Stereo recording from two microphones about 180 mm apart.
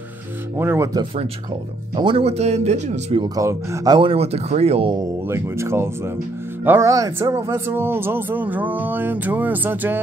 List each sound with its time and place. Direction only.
0.6 s speech: 15° right (ahead or behind)
2.0 s speech: 30° right (ahead or behind)
3.3 s speech: 15° right (ahead or behind); by 4.9 s 35° right (ahead or behind)
4.9 s speech: 15° right (ahead or behind)